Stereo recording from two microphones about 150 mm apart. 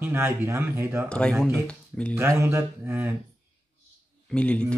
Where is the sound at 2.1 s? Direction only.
20° right (ahead or behind).